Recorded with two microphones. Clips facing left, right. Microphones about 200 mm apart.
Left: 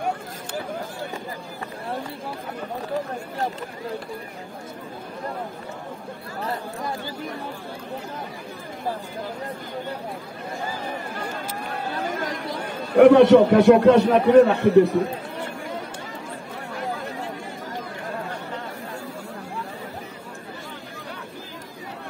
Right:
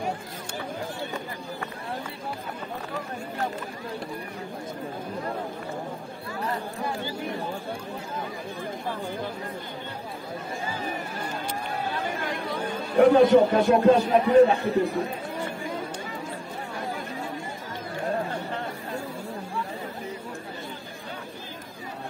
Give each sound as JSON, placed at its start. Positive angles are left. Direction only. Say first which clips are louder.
{"t": 12.9, "sound": "a man's voice", "louder": "left 5 dB", "side_deg": 75}